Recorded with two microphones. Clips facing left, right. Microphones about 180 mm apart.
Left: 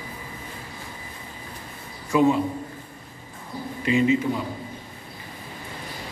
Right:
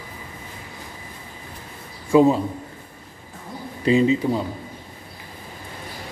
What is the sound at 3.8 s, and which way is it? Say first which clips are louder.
Speech: right 3 dB; 30° right (ahead or behind).